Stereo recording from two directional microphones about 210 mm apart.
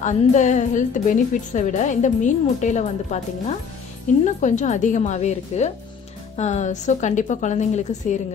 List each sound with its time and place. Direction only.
0.0 s a woman's voice: 35° left (ahead or behind)